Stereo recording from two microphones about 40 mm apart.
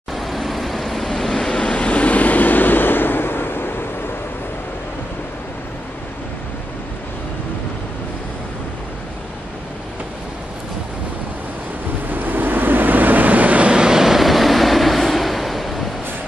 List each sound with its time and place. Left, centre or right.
0.1 s vehicle: centre; by 3.7 s left
12.1 s waves: right
13.7 s vehicle: centre
14.0 s vehicle: centre